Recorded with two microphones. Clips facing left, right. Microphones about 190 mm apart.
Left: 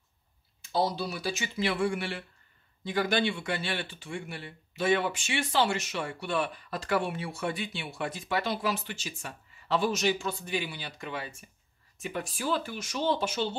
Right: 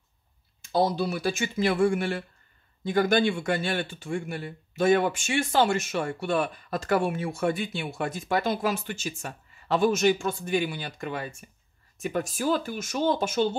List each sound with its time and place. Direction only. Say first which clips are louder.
0.7 s speech: right 5 dB; 50° right (ahead or behind)